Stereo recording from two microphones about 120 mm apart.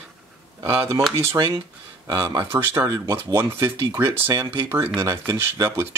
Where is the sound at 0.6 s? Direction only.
25° right (ahead or behind).